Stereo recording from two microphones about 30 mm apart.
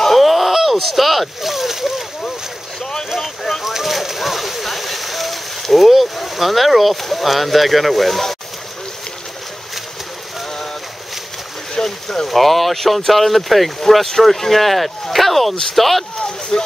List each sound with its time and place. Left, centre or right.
0.0 s a sound: centre
2.8 s boat: centre
3.2 s boat: centre
3.6 s a sound: centre
11.7 s speech: centre
16.5 s speech: left